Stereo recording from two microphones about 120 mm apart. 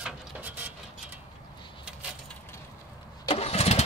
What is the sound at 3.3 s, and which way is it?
Vehicle, 60° left (ahead or behind).